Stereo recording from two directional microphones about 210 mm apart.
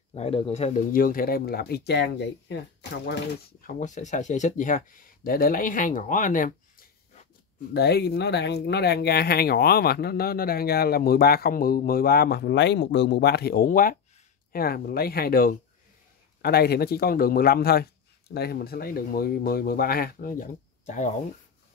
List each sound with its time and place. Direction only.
0.1 s speech: 25° left (ahead or behind); by 3.2 s 55° left (ahead or behind)
3.6 s speech: 35° left (ahead or behind)
7.7 s speech: 50° left (ahead or behind); by 21.1 s 35° left (ahead or behind)